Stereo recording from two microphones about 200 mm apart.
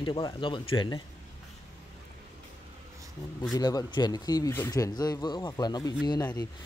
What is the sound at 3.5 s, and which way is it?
Speech, 20° left (ahead or behind).